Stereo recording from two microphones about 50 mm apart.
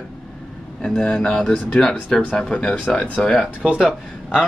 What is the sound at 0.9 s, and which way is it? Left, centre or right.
Speech, centre.